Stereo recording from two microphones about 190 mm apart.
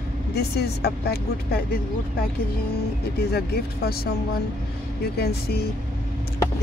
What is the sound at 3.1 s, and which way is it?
Speech, 55° left (ahead or behind).